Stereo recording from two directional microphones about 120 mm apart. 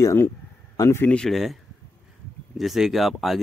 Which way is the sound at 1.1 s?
5° left (ahead or behind).